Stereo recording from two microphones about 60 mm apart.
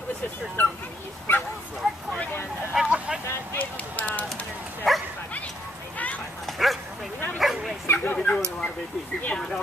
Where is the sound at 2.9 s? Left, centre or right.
Centre.